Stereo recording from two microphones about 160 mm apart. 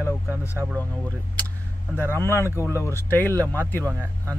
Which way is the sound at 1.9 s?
15° left (ahead or behind).